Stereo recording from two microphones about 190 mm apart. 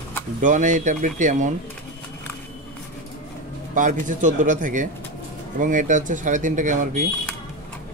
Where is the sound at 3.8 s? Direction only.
40° right (ahead or behind).